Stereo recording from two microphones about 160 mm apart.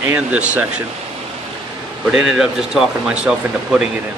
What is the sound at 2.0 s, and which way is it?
Speech, 5° right (ahead or behind).